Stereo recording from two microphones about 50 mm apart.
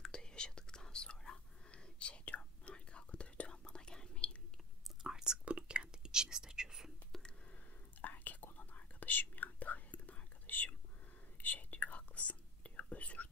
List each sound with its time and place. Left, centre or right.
0.0 s whispering: centre
4.8 s whispering: centre
5.4 s whispering: right
8.0 s whispering: left